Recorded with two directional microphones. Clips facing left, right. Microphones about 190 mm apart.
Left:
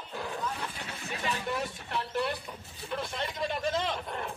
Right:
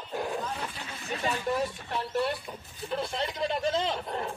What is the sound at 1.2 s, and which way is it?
Speech, 30° right (ahead or behind).